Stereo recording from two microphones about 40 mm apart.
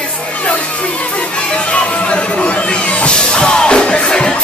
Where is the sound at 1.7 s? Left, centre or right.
Left.